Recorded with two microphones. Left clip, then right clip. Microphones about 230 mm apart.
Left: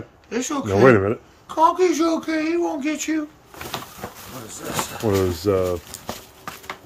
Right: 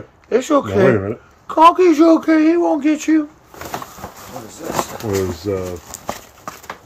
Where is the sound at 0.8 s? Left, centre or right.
Centre.